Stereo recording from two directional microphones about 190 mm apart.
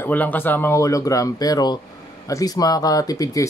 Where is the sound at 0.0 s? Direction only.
10° left (ahead or behind).